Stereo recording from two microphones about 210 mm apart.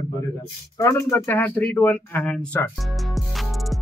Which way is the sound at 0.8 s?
15° left (ahead or behind).